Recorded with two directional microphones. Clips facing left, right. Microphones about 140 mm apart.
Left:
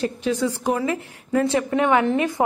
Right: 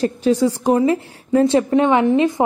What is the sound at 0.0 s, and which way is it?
A woman's voice, 35° right (ahead or behind).